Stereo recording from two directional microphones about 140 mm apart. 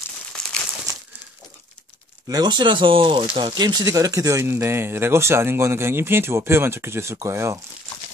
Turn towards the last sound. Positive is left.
turn(degrees=-20)  # may be behind; listen again after turning